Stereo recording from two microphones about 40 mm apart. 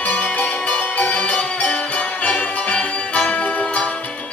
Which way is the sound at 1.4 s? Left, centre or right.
Left.